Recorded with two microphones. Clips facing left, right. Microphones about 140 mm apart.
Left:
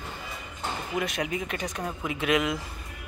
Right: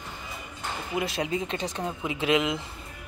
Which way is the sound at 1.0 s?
25° right (ahead or behind).